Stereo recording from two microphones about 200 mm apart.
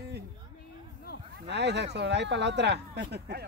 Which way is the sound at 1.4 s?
60° right (ahead or behind).